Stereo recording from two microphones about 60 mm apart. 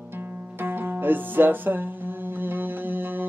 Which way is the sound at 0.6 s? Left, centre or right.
Right.